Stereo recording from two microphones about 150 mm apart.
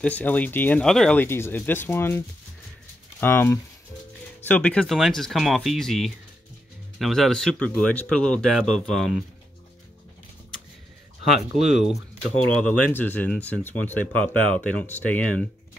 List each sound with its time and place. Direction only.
0.0 s speech: 10° left (ahead or behind)
1.2 s speech: 15° left (ahead or behind)
11.3 s speech: centre (ahead or behind)